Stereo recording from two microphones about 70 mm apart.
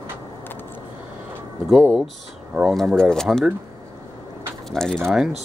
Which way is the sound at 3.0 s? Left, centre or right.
Centre.